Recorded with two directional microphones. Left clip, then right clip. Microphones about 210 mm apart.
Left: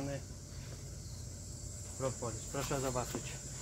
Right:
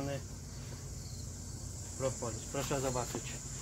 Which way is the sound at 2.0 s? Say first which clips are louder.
Right 2 dB; 5° left (ahead or behind).